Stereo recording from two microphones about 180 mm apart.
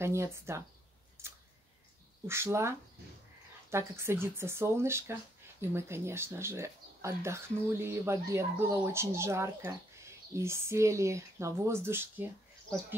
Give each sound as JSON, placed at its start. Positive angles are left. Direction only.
{"t": 0.0, "sound": "speech", "side_deg": -15}
{"t": 1.2, "sound": "a sound", "side_deg": -15}
{"t": 2.2, "sound": "speech", "side_deg": -15}
{"t": 3.7, "sound": "speech", "side_deg": -15}